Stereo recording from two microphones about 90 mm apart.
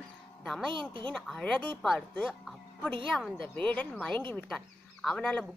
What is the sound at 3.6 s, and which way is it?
Speech, 15° left (ahead or behind).